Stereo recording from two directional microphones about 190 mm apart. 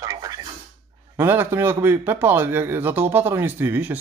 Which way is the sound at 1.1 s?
10° right (ahead or behind).